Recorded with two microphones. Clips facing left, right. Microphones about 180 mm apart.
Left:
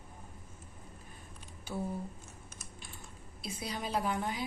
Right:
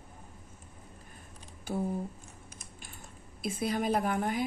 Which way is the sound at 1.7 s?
55° right (ahead or behind).